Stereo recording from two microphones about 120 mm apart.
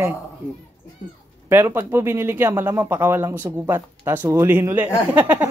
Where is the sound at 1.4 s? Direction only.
20° right (ahead or behind).